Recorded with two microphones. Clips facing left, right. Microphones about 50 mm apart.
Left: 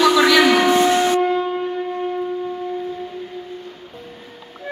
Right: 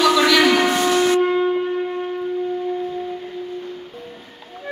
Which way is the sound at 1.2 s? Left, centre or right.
Centre.